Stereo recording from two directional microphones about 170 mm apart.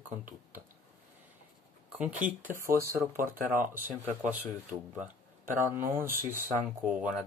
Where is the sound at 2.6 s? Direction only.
55° right (ahead or behind).